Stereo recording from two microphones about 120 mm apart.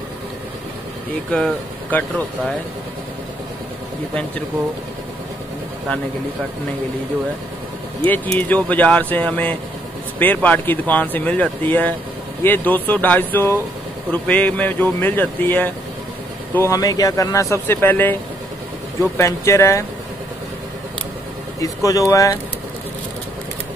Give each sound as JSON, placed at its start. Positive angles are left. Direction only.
{"t": 1.3, "sound": "speech", "side_deg": 10}
{"t": 8.3, "sound": "speech", "side_deg": 10}
{"t": 19.1, "sound": "speech", "side_deg": 25}
{"t": 21.5, "sound": "speech", "side_deg": 30}